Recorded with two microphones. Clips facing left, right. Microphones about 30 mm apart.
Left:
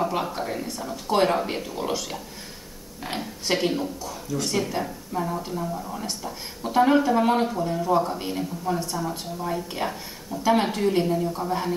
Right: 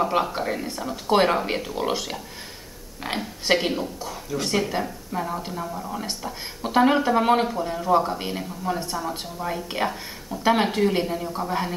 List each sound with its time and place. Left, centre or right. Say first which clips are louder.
0.0 s speech: right 3 dB; centre
9.1 s speech: even; right